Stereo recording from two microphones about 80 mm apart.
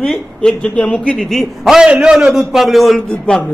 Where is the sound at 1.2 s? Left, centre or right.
Centre.